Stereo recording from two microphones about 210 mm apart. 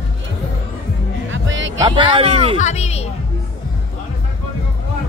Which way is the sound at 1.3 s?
65° right (ahead or behind).